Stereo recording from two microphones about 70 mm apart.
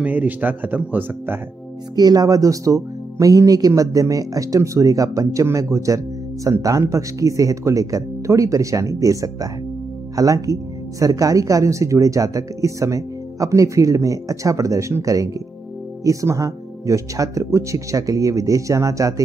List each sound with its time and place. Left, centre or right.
0.0 s speech: right
2.0 s speech: right